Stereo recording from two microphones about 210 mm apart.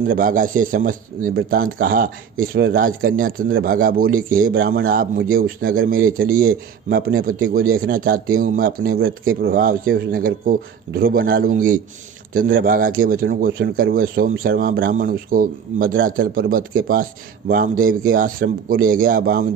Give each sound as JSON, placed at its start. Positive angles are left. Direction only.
{"t": 0.0, "sound": "a man's voice", "side_deg": -40}